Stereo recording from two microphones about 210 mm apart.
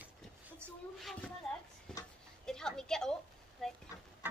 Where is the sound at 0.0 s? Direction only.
5° right (ahead or behind).